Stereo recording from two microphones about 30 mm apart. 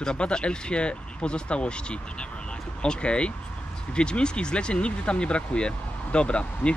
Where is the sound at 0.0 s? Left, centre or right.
Left.